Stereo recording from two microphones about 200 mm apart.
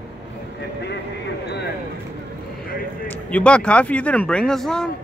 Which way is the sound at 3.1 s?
5° left (ahead or behind).